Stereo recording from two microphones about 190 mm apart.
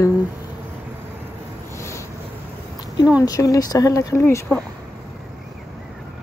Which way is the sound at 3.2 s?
20° left (ahead or behind).